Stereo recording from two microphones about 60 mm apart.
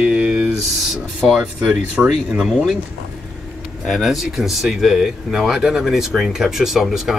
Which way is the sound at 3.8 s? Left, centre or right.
Centre.